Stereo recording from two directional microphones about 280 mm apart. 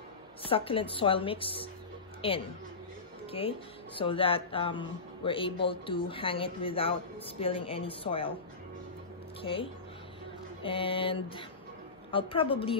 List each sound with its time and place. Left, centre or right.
0.4 s a woman's voice: centre
9.4 s a woman's voice: centre